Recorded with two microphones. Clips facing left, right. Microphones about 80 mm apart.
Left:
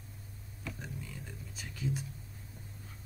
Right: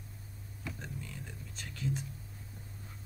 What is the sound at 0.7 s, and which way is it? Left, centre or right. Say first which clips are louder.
Whispering: even; centre.